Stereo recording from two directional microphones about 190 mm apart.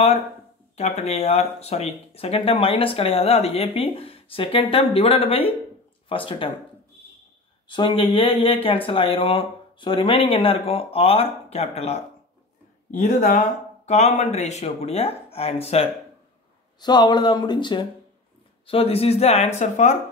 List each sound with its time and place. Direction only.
0.7 s speech: 35° left (ahead or behind)
7.6 s speech: 25° left (ahead or behind)
16.8 s speech: 20° left (ahead or behind); by 20.0 s 40° left (ahead or behind)